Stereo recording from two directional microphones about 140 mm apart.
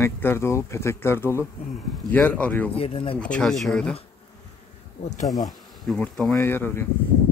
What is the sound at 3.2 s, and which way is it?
Speech, 5° left (ahead or behind).